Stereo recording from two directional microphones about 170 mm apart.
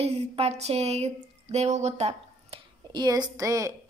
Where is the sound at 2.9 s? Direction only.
25° right (ahead or behind).